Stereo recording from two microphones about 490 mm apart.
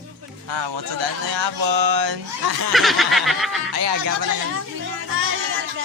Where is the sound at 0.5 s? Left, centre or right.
Right.